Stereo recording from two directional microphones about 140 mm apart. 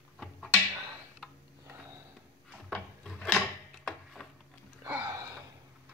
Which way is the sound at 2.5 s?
Centre (ahead or behind).